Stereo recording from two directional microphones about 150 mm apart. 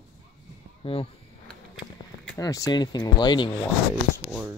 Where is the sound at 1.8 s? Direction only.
65° left (ahead or behind).